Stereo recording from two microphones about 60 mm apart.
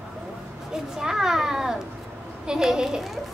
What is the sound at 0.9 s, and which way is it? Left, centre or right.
A child's voice, centre.